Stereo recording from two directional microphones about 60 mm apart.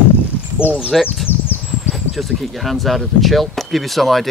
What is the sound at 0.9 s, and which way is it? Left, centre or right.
Speech, centre.